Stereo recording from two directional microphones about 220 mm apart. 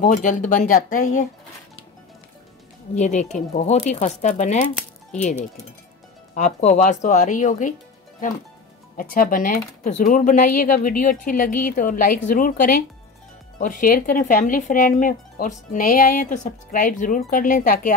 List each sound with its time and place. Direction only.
0.0 s speech: 35° left (ahead or behind)
3.0 s speech: 30° left (ahead or behind)
6.3 s speech: 30° left (ahead or behind)
8.9 s speech: 40° left (ahead or behind)